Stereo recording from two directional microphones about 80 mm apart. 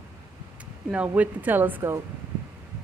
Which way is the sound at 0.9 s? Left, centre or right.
Centre.